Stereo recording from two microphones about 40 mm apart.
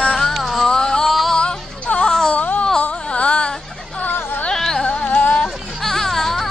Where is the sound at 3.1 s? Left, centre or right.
Left.